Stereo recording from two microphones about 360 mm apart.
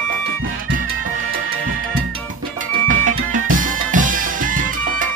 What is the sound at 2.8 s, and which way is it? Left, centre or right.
Music, right.